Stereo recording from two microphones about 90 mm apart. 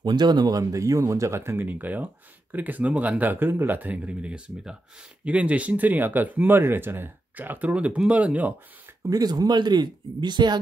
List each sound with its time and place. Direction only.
0.0 s speech: 50° right (ahead or behind); by 8.5 s 15° right (ahead or behind)
9.1 s speech: 45° right (ahead or behind)